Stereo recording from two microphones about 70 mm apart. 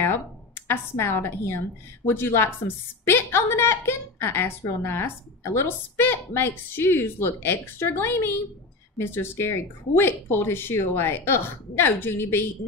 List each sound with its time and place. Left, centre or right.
0.0 s a woman's voice: left